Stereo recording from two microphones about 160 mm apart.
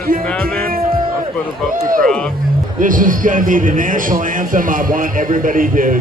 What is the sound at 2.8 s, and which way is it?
A man's voice, 55° right (ahead or behind).